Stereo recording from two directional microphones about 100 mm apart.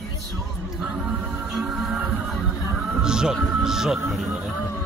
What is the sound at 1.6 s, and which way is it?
Speech, 5° right (ahead or behind).